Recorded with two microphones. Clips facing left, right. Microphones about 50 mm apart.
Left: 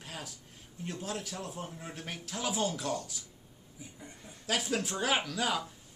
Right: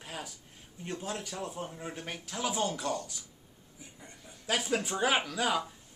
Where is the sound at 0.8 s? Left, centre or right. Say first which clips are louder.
Right 1 dB; centre.